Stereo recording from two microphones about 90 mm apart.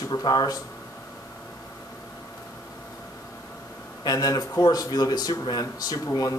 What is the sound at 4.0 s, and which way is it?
Speech, 45° left (ahead or behind).